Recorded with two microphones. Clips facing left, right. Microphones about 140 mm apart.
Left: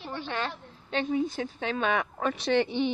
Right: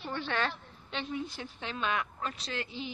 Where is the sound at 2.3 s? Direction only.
70° left (ahead or behind).